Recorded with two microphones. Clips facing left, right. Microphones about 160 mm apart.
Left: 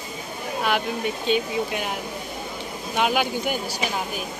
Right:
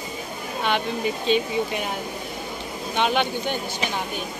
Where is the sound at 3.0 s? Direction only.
5° left (ahead or behind).